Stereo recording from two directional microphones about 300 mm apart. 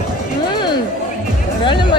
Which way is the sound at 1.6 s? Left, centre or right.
Centre.